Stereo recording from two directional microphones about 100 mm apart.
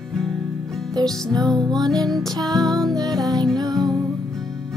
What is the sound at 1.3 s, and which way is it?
Music, 40° right (ahead or behind).